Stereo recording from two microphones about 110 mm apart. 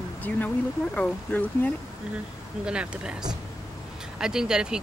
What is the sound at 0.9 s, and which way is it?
Speech, 15° left (ahead or behind).